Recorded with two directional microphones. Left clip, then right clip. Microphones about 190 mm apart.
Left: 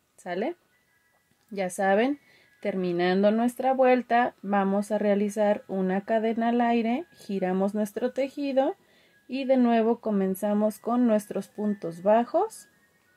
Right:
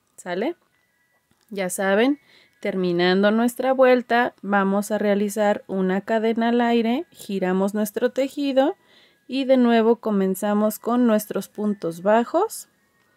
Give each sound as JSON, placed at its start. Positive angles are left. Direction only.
{"t": 0.2, "sound": "speech", "side_deg": -35}